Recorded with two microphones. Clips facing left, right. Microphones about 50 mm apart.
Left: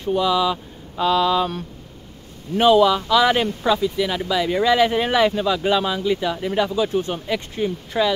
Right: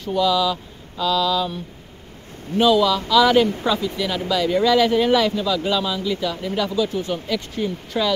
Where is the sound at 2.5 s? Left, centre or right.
Left.